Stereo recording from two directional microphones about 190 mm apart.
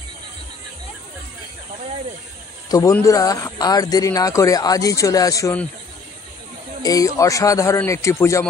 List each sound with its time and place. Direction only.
2.7 s speech: 15° left (ahead or behind)
6.8 s speech: 20° left (ahead or behind)